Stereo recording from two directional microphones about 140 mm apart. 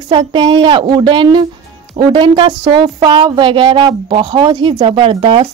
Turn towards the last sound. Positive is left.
turn(degrees=-40)  # may be behind; listen again after turning